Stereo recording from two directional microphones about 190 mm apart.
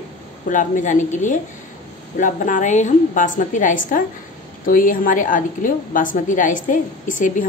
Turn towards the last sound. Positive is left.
turn(degrees=45)  # may be behind; listen again after turning